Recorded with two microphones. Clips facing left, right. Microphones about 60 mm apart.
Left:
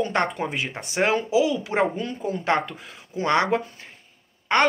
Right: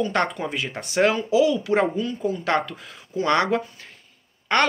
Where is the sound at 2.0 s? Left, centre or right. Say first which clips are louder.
Right 3 dB; left.